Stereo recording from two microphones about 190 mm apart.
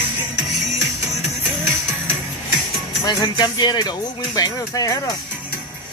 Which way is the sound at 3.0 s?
20° left (ahead or behind).